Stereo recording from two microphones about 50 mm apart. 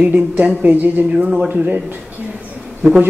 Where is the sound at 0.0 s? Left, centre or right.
Right.